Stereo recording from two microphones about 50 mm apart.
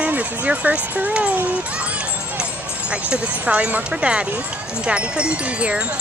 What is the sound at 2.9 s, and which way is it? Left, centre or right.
Wind chime, right.